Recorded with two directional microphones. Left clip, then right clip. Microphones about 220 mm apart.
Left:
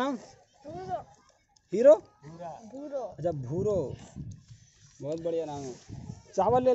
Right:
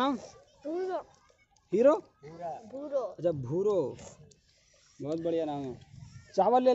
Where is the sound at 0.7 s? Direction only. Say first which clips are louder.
Right 2 dB; 40° right (ahead or behind).